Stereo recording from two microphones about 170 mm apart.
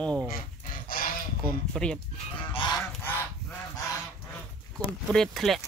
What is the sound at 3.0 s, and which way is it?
Goose, 10° left (ahead or behind).